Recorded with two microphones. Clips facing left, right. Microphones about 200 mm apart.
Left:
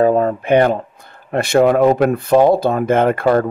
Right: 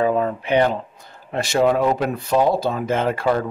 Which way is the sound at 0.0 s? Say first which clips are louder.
Left 6 dB; 45° left (ahead or behind).